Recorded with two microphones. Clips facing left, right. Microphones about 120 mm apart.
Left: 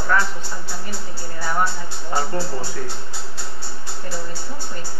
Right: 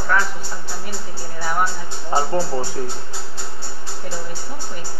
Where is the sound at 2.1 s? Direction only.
25° right (ahead or behind).